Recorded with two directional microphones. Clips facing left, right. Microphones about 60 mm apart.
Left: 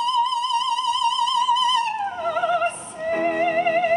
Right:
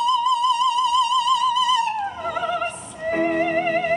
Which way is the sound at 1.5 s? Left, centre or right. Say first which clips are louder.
Right 1 dB; centre.